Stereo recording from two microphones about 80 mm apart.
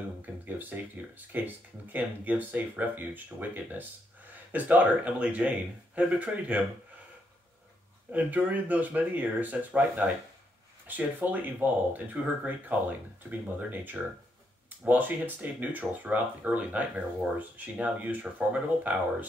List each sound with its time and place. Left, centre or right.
0.2 s speech: right
8.1 s speech: centre